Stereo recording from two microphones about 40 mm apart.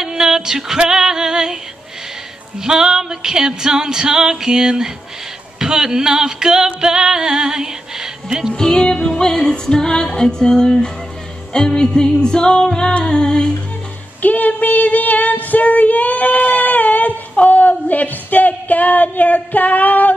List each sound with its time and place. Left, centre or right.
0.0 s female singing: centre
2.6 s music: centre
8.5 s music: centre
14.2 s child singing: left